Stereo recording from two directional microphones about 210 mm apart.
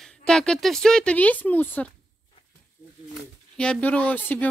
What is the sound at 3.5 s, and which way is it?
Speech, 5° left (ahead or behind).